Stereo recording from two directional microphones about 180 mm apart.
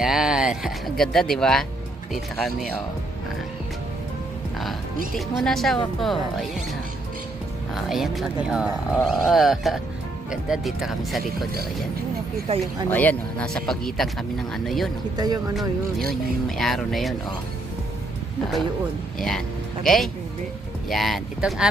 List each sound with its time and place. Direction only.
0.0 s speech: 5° right (ahead or behind)
4.6 s speech: centre (ahead or behind)
7.7 s speech: centre (ahead or behind)
12.5 s speech: 35° right (ahead or behind)
12.9 s speech: 10° left (ahead or behind)
15.1 s speech: 20° right (ahead or behind)
16.4 s speech: centre (ahead or behind)
19.2 s speech: centre (ahead or behind)